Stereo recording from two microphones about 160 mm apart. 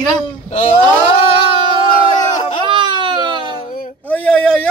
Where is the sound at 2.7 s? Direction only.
30° right (ahead or behind).